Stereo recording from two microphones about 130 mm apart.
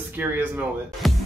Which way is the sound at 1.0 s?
Centre (ahead or behind).